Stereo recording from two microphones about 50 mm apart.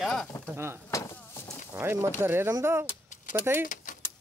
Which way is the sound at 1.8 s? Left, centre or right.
Right.